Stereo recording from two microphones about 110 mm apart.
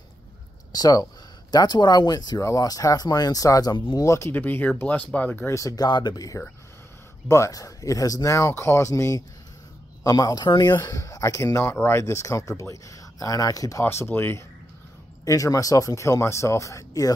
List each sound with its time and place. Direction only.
0.7 s speech: 35° left (ahead or behind); by 5.5 s 15° left (ahead or behind)
5.5 s speech: 30° left (ahead or behind)
5.9 s speech: 40° left (ahead or behind); by 14.4 s 20° left (ahead or behind)
15.2 s speech: 30° left (ahead or behind)